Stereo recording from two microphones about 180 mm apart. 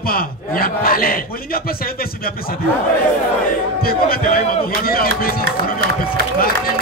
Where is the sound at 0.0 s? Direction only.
55° left (ahead or behind).